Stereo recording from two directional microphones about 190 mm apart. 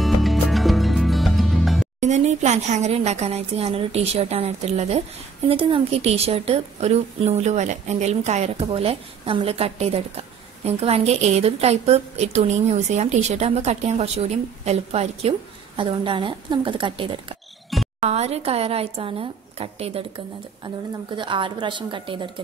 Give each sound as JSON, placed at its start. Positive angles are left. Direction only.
{"t": 0.0, "sound": "music", "side_deg": 0}
{"t": 2.0, "sound": "a woman's voice", "side_deg": -40}
{"t": 17.7, "sound": "music", "side_deg": 0}
{"t": 18.0, "sound": "a woman's voice", "side_deg": -35}
{"t": 21.2, "sound": "a woman's voice", "side_deg": -25}